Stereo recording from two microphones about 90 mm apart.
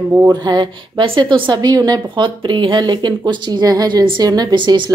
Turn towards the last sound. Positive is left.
turn(degrees=-60)  # may be behind; listen again after turning